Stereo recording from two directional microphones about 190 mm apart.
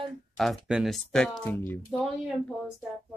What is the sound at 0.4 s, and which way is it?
Speech, centre (ahead or behind).